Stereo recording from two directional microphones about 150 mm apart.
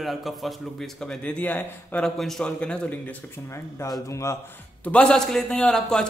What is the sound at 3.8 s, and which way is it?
Speech, 20° left (ahead or behind).